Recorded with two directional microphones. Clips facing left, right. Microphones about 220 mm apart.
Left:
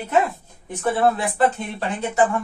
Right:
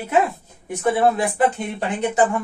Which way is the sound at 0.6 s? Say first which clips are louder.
Right 2 dB; 15° right (ahead or behind).